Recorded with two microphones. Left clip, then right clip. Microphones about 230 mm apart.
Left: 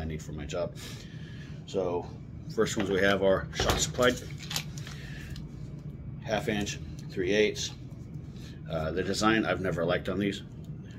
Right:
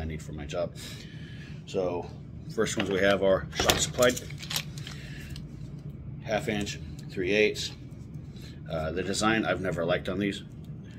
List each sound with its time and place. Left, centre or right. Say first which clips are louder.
0.0 s speech: even; centre
1.7 s speech: right 1 dB; centre
6.2 s a man's voice: right 1 dB; centre